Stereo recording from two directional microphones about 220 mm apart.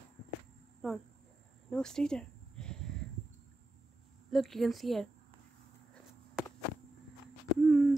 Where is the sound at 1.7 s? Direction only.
5° left (ahead or behind).